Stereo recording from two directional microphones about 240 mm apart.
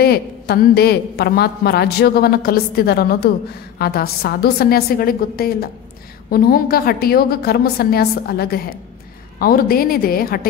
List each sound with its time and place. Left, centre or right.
0.0 s a woman's voice: left